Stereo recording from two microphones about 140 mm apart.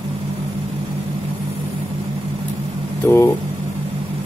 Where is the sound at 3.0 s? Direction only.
20° left (ahead or behind).